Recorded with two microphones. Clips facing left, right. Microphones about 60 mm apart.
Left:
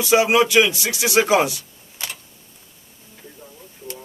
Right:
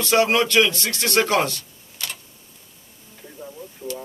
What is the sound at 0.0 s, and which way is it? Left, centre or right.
Speech, centre.